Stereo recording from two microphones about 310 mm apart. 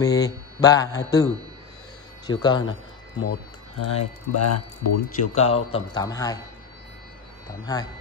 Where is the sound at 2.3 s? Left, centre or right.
Centre.